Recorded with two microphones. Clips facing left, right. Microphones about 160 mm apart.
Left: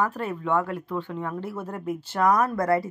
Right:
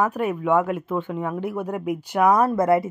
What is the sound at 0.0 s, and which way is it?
Speech, 15° right (ahead or behind).